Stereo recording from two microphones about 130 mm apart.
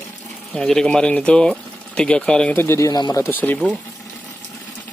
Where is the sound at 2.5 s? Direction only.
20° left (ahead or behind).